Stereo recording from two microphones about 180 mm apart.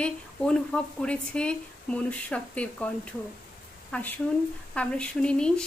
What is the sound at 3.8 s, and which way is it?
Speech, 10° left (ahead or behind).